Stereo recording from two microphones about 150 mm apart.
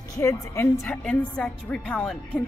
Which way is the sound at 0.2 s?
20° left (ahead or behind).